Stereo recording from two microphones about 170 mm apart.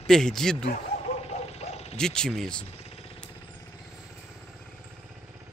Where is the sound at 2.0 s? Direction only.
5° left (ahead or behind).